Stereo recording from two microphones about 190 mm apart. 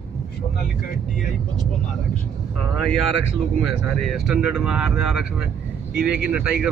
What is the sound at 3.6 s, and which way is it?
Speech, centre (ahead or behind).